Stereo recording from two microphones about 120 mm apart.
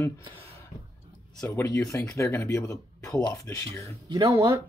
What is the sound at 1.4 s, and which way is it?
Speech, 25° left (ahead or behind).